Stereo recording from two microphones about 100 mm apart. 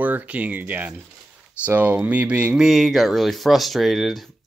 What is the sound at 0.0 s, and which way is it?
Speech, 15° right (ahead or behind).